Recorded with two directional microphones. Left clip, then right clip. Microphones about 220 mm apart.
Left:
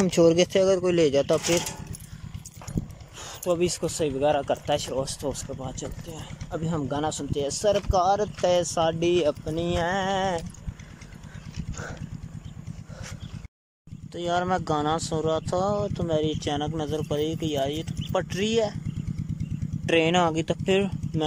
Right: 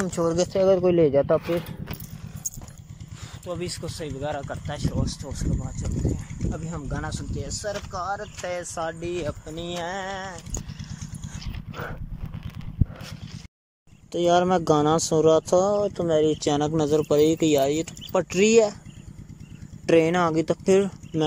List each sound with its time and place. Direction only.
0.0 s speech: 15° left (ahead or behind)
3.4 s speech: 15° left (ahead or behind)
14.1 s speech: 10° right (ahead or behind)
19.9 s speech: centre (ahead or behind)